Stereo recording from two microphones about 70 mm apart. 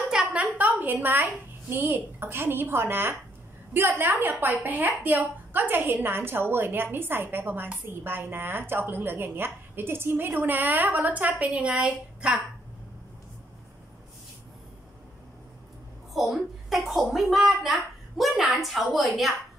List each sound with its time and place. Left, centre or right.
0.0 s a woman's voice: centre
16.1 s a woman's voice: centre